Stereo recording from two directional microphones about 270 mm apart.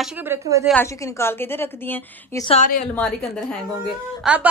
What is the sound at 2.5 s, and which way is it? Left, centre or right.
Speech, left.